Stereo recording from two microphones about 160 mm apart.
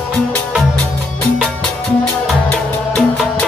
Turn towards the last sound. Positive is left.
turn(degrees=5)  # may be behind; listen again after turning